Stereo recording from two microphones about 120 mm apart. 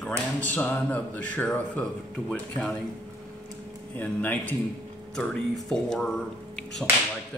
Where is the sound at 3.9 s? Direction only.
15° left (ahead or behind).